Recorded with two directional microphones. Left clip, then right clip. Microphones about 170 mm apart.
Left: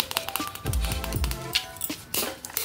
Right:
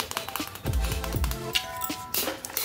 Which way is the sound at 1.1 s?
15° left (ahead or behind).